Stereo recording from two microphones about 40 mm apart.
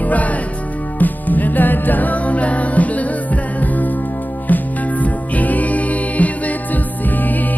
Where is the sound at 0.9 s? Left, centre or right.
Left.